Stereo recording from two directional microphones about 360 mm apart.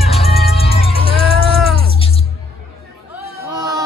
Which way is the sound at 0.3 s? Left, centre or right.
Centre.